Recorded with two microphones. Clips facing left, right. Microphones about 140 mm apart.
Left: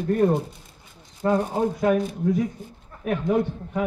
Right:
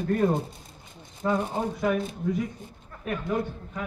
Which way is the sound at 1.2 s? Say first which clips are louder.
Left 4 dB; 50° left (ahead or behind).